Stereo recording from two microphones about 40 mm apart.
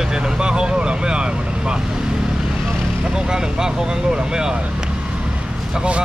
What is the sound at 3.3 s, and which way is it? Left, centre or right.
Speech, centre.